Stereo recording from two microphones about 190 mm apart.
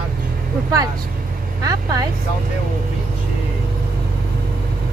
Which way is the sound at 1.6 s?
20° right (ahead or behind).